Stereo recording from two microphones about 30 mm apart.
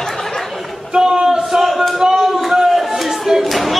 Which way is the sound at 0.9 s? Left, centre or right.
Right.